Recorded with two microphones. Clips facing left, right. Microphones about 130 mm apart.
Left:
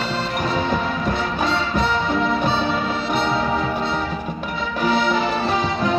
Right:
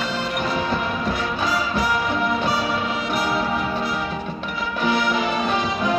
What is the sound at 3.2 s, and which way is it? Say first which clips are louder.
Music: left 2 dB; 25° left (ahead or behind).